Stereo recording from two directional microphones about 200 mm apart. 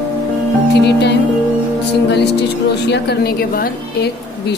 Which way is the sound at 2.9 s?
55° left (ahead or behind).